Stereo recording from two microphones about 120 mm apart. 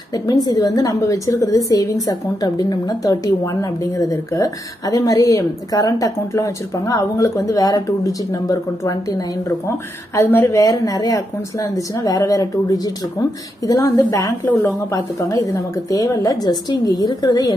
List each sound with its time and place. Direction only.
0.1 s a woman's voice: 35° left (ahead or behind)